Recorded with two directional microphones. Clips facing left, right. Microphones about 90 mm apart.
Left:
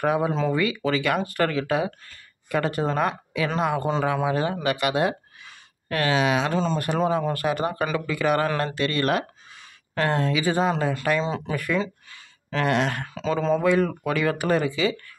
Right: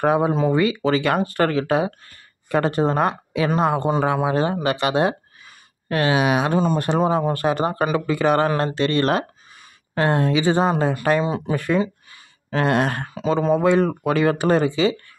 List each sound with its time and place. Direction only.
0.0 s speech: 35° right (ahead or behind); by 6.8 s 15° right (ahead or behind)
6.8 s speech: 30° right (ahead or behind)